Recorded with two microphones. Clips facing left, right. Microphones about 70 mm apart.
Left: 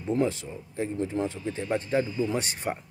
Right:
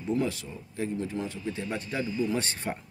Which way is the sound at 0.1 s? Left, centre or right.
Left.